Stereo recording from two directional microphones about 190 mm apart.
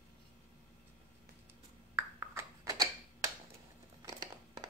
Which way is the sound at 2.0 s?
15° right (ahead or behind).